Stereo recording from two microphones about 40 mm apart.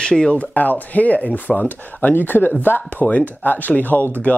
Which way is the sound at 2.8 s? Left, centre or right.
Left.